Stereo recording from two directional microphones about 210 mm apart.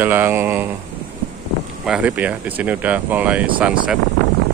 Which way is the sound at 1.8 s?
5° right (ahead or behind).